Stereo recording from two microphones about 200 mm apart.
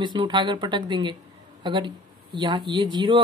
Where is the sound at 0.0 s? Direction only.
20° right (ahead or behind).